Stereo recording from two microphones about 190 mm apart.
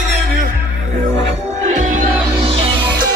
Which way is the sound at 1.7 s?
40° right (ahead or behind).